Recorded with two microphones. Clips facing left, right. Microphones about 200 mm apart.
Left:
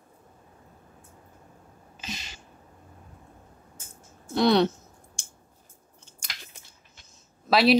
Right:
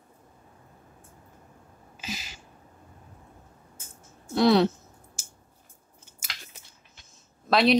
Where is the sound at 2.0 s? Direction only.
5° right (ahead or behind).